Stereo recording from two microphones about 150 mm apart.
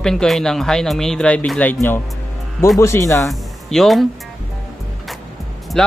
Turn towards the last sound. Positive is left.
turn(degrees=5)  # may be behind; listen again after turning